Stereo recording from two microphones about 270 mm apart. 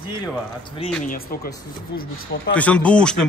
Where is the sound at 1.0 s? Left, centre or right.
Left.